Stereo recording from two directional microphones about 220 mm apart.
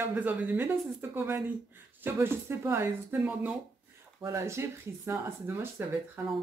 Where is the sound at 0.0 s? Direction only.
10° right (ahead or behind).